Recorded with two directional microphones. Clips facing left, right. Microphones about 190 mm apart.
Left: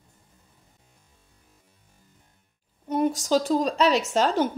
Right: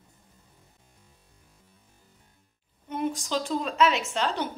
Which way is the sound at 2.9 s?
40° left (ahead or behind).